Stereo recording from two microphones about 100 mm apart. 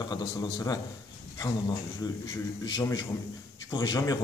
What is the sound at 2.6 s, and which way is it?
A man's voice, 40° left (ahead or behind).